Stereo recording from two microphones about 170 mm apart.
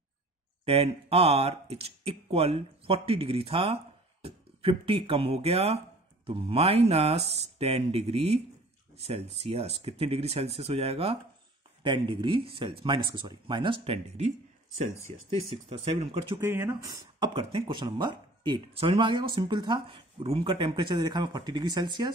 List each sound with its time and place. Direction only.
0.7 s speech: 35° right (ahead or behind)
16.3 s speech: 15° right (ahead or behind)
17.3 s speech: 35° right (ahead or behind)